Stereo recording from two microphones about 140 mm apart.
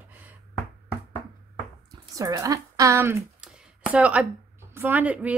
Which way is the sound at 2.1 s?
25° right (ahead or behind).